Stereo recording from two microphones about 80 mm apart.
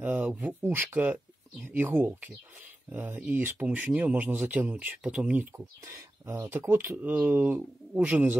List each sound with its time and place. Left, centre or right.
0.0 s speech: centre
5.9 s speech: right; by 8.4 s centre